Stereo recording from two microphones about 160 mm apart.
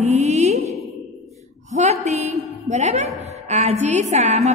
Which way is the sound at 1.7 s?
45° right (ahead or behind).